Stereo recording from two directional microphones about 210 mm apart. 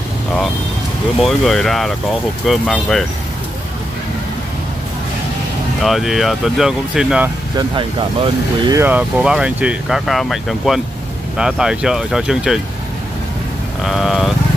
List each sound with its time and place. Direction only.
1.2 s speech: centre (ahead or behind)
5.8 s speech: centre (ahead or behind)
7.5 s speech: 20° right (ahead or behind)
8.8 s speech: 5° right (ahead or behind)
13.8 s speech: centre (ahead or behind)